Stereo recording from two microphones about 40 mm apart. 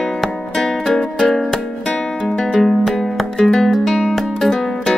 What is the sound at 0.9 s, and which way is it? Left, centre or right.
Music, centre.